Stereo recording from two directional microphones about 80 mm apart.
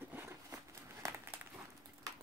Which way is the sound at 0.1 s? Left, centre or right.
Right.